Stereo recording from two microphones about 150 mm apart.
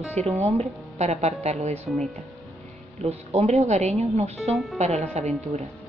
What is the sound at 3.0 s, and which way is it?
A woman's voice, 45° right (ahead or behind).